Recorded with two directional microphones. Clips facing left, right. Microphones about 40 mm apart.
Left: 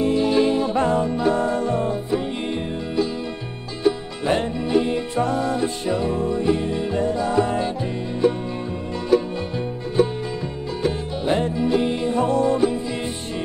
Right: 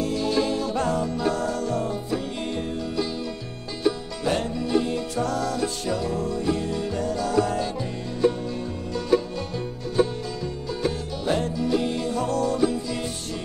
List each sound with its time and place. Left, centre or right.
0.0 s music: left
4.2 s music: left
10.9 s music: left